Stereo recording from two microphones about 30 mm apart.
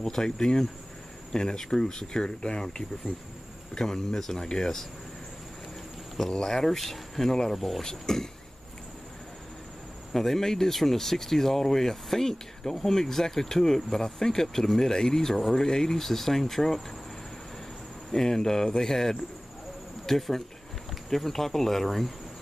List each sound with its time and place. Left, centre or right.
0.0 s speech: centre
3.7 s speech: centre
6.2 s speech: centre
7.8 s speech: centre
10.1 s speech: centre
18.1 s speech: centre